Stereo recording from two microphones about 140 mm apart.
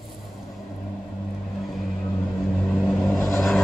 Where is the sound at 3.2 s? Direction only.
20° left (ahead or behind).